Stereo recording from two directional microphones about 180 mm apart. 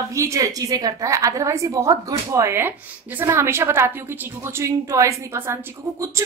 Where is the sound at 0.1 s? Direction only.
15° right (ahead or behind).